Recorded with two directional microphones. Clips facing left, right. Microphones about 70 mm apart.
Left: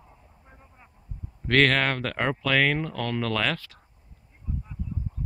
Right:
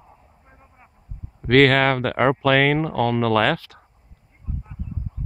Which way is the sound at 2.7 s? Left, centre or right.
Right.